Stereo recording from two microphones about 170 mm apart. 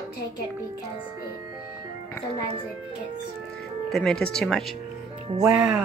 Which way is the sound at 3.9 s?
5° left (ahead or behind).